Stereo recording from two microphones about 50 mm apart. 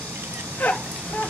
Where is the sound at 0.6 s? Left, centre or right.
Left.